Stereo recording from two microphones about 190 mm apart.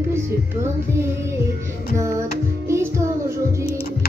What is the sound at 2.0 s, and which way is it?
Music, 15° right (ahead or behind).